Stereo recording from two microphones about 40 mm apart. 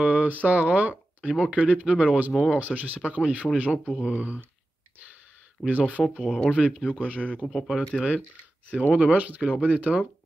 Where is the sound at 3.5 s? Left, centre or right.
Left.